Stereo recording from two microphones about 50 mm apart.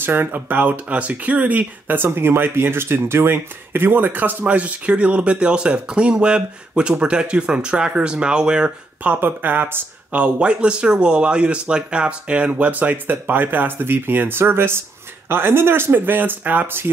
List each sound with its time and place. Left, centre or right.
0.0 s speech: right
2.0 s speech: right; by 8.7 s centre
9.0 s speech: right
10.1 s speech: right